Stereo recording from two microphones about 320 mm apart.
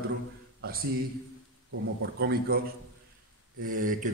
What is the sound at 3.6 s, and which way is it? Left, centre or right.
Speech, right.